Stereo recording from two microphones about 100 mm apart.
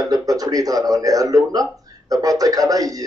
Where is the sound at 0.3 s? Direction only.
35° right (ahead or behind).